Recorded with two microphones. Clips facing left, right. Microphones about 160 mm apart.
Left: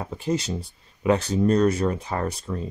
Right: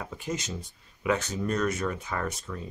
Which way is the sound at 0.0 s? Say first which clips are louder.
Left 8 dB; 30° left (ahead or behind).